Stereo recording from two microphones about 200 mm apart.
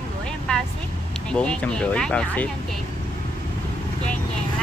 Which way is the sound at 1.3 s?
5° left (ahead or behind).